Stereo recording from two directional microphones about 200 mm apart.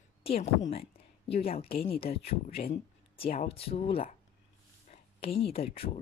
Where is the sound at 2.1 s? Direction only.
30° left (ahead or behind).